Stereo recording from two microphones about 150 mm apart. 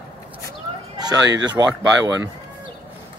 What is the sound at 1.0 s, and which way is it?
A man's voice, 25° right (ahead or behind).